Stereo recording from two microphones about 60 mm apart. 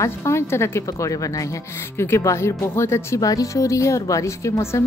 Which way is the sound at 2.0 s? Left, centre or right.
Left.